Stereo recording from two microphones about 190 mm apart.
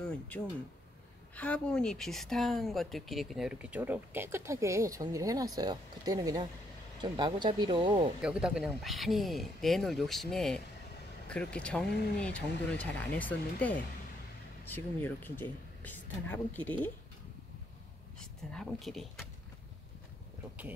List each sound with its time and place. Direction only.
0.0 s a sound: 5° left (ahead or behind)
1.3 s speech: 5° left (ahead or behind); by 8.1 s 25° right (ahead or behind)
8.2 s speech: 5° right (ahead or behind)
18.2 s speech: 5° left (ahead or behind)